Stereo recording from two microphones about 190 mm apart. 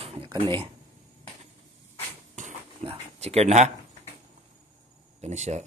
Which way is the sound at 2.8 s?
30° right (ahead or behind).